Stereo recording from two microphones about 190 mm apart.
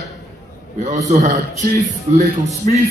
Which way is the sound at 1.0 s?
40° right (ahead or behind).